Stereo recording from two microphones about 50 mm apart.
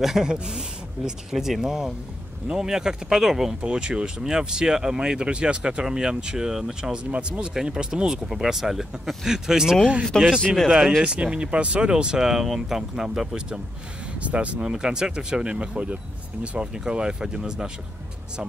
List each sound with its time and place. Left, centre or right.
0.0 s speech: centre
7.1 s speech: right
10.3 s speech: centre
11.0 s speech: centre
14.2 s speech: right
14.6 s speech: centre